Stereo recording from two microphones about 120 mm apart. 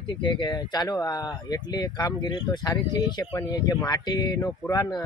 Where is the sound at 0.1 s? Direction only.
40° left (ahead or behind).